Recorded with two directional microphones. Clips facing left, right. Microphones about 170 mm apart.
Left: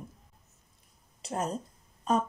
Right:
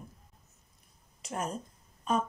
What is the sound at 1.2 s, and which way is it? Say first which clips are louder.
Speech: left 3 dB; 35° left (ahead or behind).